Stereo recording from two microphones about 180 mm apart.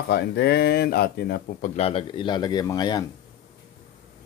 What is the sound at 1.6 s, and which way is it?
Speech, 35° left (ahead or behind).